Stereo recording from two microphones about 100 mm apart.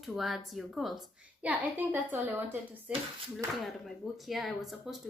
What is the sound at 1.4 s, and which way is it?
A woman's voice, 15° right (ahead or behind).